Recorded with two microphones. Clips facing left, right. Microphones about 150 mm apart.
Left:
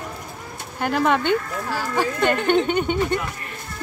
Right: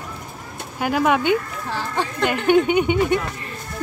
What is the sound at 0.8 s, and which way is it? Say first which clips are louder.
Speech: right 1 dB; 5° right (ahead or behind).